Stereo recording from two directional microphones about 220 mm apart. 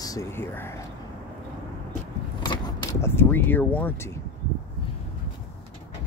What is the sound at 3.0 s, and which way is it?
Speech, 10° left (ahead or behind).